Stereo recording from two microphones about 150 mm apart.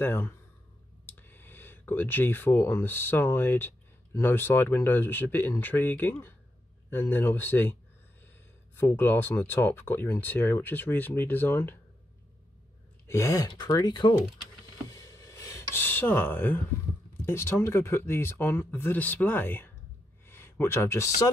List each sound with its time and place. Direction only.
0.0 s speech: 15° left (ahead or behind)
8.7 s speech: 15° left (ahead or behind)
13.0 s speech: 20° left (ahead or behind)
14.9 s a sound: 25° left (ahead or behind)
17.3 s speech: 15° left (ahead or behind)